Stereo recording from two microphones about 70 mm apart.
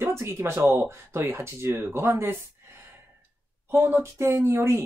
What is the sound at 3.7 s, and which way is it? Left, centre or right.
Speech, right.